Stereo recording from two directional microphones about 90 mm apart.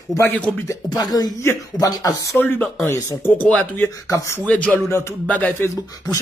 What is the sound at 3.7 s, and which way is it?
Speech, 35° left (ahead or behind).